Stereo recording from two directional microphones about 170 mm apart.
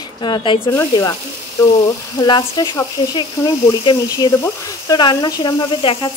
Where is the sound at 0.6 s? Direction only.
15° left (ahead or behind).